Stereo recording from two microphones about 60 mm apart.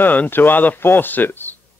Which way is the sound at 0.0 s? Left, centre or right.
Left.